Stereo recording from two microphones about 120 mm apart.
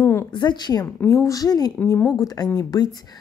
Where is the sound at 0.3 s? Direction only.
40° left (ahead or behind).